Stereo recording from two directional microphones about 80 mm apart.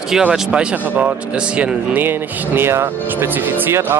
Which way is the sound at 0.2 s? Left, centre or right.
Centre.